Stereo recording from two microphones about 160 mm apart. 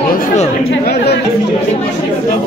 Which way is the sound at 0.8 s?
85° left.